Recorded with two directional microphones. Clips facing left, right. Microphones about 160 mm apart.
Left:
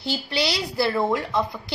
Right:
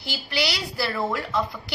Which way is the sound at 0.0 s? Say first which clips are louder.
Left 3 dB; 25° left (ahead or behind).